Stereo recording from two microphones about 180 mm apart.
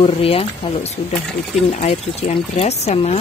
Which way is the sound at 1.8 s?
35° left (ahead or behind).